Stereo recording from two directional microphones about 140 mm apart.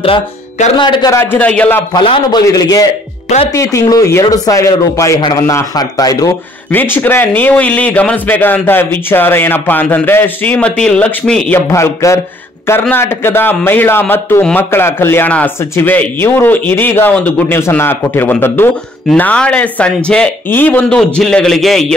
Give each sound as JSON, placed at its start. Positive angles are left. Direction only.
{"t": 0.7, "sound": "a man's voice", "side_deg": 35}
{"t": 1.1, "sound": "a man's voice", "side_deg": 15}
{"t": 2.0, "sound": "speech", "side_deg": 30}
{"t": 6.7, "sound": "a man's voice", "side_deg": 15}